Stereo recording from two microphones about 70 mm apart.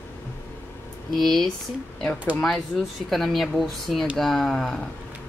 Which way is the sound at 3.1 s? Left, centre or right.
Centre.